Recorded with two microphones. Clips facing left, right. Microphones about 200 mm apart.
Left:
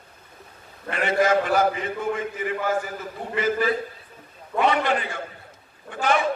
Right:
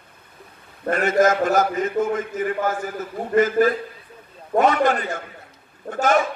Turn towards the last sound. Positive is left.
turn(degrees=-45)  # may be behind; listen again after turning